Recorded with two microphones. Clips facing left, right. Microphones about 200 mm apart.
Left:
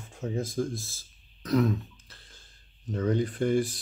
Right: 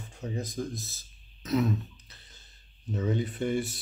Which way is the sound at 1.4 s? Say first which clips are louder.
Left 2 dB; centre (ahead or behind).